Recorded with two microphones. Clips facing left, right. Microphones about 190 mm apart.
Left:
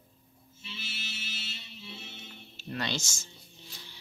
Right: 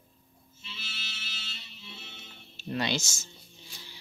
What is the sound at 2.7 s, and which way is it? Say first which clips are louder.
Speech: right 4 dB; 15° right (ahead or behind).